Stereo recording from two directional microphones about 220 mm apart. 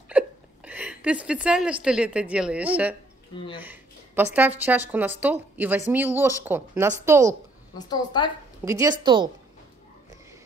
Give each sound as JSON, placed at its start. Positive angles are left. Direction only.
{"t": 0.7, "sound": "a woman's voice", "side_deg": -5}
{"t": 7.7, "sound": "a woman's voice", "side_deg": 20}
{"t": 8.6, "sound": "a woman's voice", "side_deg": -15}